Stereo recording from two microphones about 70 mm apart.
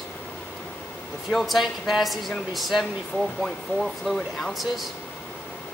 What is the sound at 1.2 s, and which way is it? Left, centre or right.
Speech, centre.